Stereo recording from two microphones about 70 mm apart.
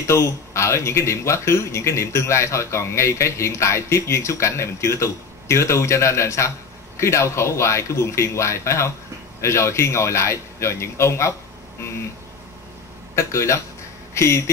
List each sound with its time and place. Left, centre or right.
0.0 s speech: left
13.1 s speech: left